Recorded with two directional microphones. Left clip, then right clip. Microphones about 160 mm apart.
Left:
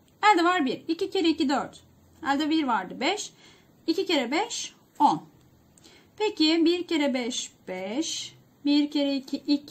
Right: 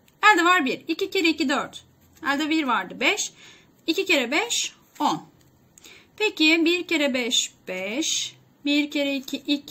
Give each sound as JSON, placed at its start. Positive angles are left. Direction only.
{"t": 0.2, "sound": "a woman's voice", "side_deg": 40}